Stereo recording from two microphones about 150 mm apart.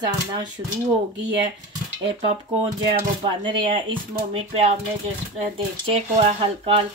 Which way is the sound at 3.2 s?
35° right (ahead or behind).